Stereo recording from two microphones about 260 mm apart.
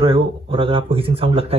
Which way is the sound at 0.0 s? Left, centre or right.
Right.